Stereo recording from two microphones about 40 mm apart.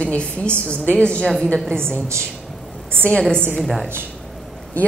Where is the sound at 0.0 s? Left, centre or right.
Left.